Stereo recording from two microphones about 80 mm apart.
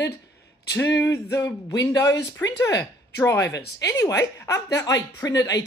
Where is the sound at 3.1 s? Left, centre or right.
Left.